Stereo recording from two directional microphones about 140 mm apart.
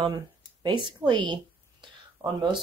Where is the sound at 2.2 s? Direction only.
15° right (ahead or behind).